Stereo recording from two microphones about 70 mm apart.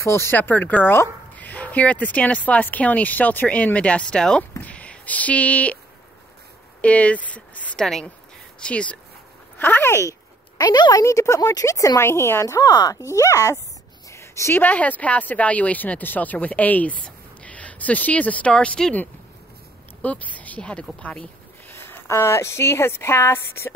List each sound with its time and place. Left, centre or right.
0.0 s speech: left
0.4 s speech: left
6.8 s speech: centre
7.8 s speech: centre
9.6 s speech: left
10.6 s a woman's voice: left
11.1 s speech: left
12.0 s speech: left
12.5 s a woman's voice: left
13.0 s speech: left
14.1 s a sound: left
14.5 s speech: left
20.0 s a woman's voice: left
21.6 s speech: left